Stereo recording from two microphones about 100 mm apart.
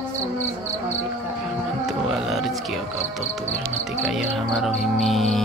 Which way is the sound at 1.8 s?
Centre (ahead or behind).